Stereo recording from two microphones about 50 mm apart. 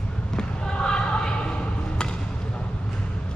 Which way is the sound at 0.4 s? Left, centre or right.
Centre.